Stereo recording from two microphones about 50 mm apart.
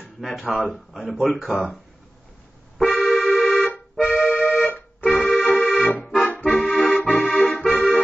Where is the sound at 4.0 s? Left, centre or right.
Centre.